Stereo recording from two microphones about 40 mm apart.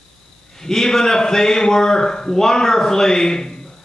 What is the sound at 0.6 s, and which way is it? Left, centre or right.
A man's voice, centre.